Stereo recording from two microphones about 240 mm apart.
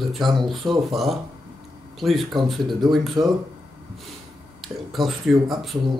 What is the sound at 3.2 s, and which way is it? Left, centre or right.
Speech, centre.